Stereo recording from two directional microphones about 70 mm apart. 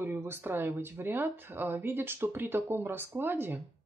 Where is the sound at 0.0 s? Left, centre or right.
Right.